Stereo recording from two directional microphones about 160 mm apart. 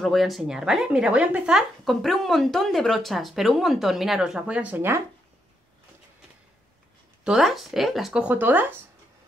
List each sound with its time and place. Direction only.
0.0 s speech: centre (ahead or behind)
7.2 s speech: centre (ahead or behind)